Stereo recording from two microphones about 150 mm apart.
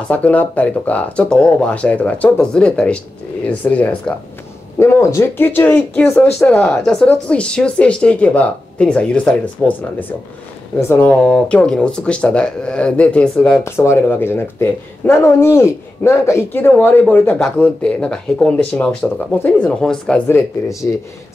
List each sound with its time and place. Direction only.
0.1 s speech: 10° left (ahead or behind)
20.2 s speech: 15° left (ahead or behind)